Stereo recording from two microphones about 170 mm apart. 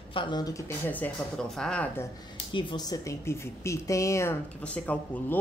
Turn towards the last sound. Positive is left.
turn(degrees=10)  # may be behind; listen again after turning